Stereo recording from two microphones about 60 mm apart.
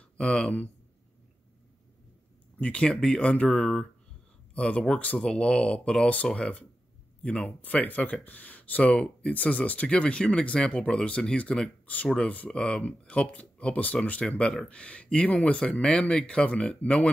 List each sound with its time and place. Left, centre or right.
0.2 s speech: centre
2.6 s speech: centre